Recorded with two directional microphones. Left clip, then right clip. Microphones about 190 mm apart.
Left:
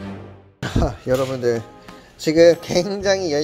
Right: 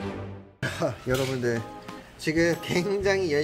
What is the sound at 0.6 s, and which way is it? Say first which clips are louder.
Speech: left 5 dB; 30° left (ahead or behind).